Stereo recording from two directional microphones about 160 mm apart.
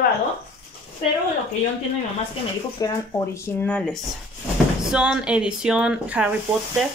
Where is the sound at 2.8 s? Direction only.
20° left (ahead or behind); by 4.0 s 5° left (ahead or behind).